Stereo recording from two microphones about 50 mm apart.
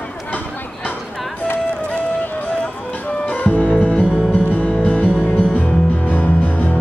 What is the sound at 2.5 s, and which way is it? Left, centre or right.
Music, left.